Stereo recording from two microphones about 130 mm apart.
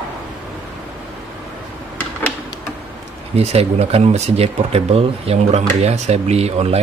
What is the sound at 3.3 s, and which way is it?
Speech, 55° right (ahead or behind).